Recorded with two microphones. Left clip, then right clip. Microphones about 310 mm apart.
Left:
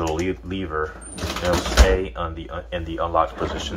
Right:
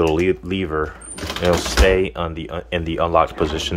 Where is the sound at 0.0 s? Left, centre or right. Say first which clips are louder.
Right 7 dB; right.